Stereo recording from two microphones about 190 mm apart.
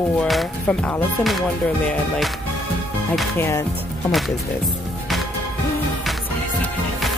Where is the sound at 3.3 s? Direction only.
15° left (ahead or behind).